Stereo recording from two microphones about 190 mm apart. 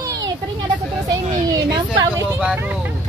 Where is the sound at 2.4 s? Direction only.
5° right (ahead or behind).